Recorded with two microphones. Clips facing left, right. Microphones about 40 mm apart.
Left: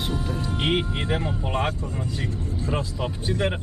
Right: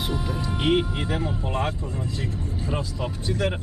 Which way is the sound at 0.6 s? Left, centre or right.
Centre.